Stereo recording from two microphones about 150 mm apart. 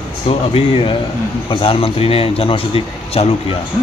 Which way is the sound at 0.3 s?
40° left (ahead or behind).